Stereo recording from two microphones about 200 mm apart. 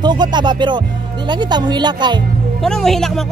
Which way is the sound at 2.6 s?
Centre (ahead or behind).